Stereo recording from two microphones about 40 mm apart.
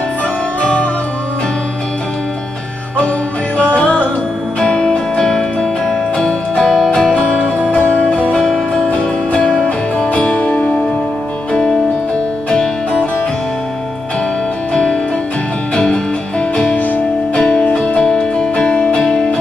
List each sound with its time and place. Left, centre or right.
0.6 s music: left
4.6 s music: left
9.3 s music: left
14.7 s music: left
15.7 s music: centre
16.7 s music: left
17.4 s music: left